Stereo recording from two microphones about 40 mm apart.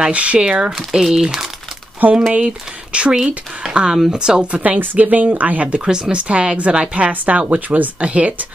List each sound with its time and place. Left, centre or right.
0.1 s speech: right
1.0 s speech: centre
2.0 s speech: right
2.3 s speech: right
3.9 s speech: centre
4.6 s a woman's voice: right
5.9 s a woman's voice: centre; by 8.5 s right